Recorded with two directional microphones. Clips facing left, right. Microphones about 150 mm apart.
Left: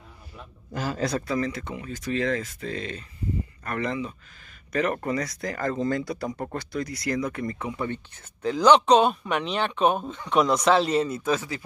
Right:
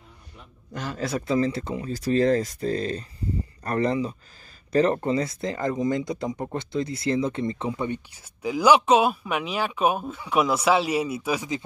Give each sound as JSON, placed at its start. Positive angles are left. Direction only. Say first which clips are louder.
{"t": 0.7, "sound": "speech", "louder": "left 2 dB", "side_deg": 0}
{"t": 1.2, "sound": "speech", "louder": "right 4 dB", "side_deg": -25}
{"t": 8.4, "sound": "speech", "louder": "left 1 dB", "side_deg": -10}